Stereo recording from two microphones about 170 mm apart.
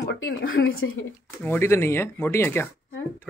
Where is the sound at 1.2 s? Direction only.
15° left (ahead or behind).